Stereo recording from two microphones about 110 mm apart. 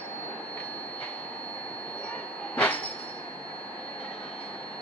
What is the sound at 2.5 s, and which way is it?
Train, 15° left (ahead or behind).